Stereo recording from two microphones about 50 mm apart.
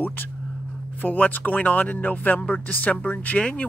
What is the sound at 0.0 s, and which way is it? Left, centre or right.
Speech, left.